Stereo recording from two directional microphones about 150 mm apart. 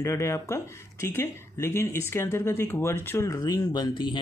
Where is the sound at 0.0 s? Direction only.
20° left (ahead or behind).